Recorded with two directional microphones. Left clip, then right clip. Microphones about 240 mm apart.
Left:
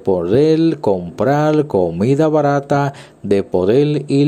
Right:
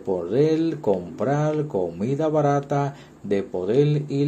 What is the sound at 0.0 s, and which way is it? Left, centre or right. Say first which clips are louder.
Speech: left 8 dB; left.